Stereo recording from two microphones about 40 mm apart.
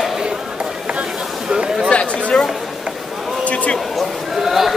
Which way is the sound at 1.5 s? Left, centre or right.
Right.